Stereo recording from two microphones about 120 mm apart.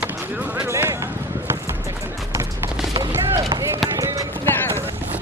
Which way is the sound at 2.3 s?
20° right (ahead or behind).